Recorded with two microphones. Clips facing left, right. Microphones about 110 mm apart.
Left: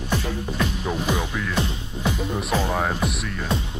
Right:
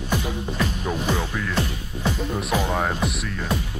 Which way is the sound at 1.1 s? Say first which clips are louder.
Even; 15° left (ahead or behind).